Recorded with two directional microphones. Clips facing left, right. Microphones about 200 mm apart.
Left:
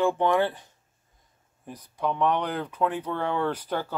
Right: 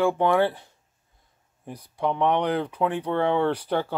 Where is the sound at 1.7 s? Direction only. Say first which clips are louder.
Right 2 dB; 10° right (ahead or behind).